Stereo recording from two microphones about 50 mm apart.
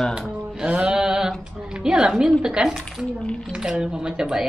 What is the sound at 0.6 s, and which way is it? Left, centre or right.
A woman's voice, right.